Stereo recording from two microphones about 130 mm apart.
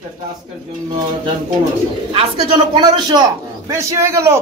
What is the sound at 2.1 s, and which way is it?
A man's voice, 40° right (ahead or behind).